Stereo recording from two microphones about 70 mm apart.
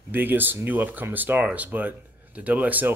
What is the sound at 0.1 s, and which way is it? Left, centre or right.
Speech, right.